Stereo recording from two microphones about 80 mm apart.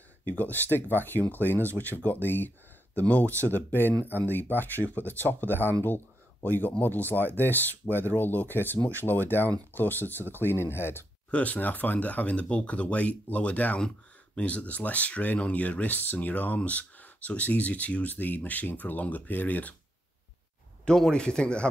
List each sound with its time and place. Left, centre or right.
0.3 s speech: left
11.2 s speech: centre
20.8 s speech: centre